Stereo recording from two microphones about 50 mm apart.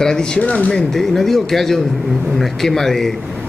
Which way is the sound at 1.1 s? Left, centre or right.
Centre.